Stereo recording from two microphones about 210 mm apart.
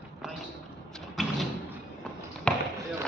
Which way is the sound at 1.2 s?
Centre (ahead or behind).